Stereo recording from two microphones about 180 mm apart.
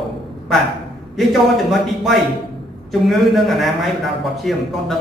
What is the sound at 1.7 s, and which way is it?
A man's voice, centre (ahead or behind).